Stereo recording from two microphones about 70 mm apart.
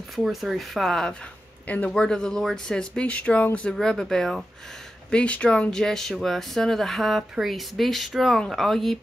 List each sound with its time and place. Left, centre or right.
0.1 s speech: centre
1.7 s speech: left
2.0 s speech: centre
3.7 s speech: centre